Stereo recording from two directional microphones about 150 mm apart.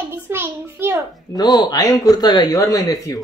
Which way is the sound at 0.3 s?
15° right (ahead or behind).